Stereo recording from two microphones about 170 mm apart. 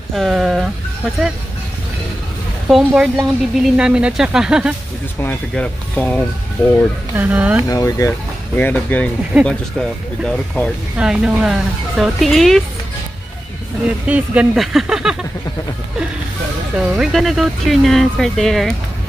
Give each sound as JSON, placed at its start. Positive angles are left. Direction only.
{"t": 0.1, "sound": "a sound", "side_deg": 0}
{"t": 2.7, "sound": "speech", "side_deg": -5}
{"t": 5.2, "sound": "speech", "side_deg": 10}
{"t": 7.2, "sound": "speech", "side_deg": -10}
{"t": 7.6, "sound": "speech", "side_deg": 20}
{"t": 8.5, "sound": "speech", "side_deg": 10}
{"t": 14.0, "sound": "speech", "side_deg": -10}
{"t": 16.7, "sound": "speech", "side_deg": -5}